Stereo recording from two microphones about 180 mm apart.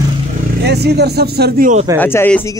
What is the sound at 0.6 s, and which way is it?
Speech, 65° right (ahead or behind).